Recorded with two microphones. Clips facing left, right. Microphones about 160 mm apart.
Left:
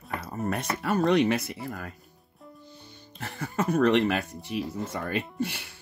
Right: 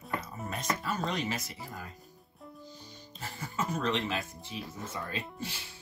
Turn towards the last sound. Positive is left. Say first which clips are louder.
# left 9 dB
turn(degrees=65)  # may be behind; listen again after turning